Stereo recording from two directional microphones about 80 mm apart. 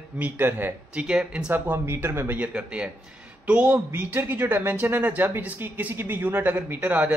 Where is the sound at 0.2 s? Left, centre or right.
Right.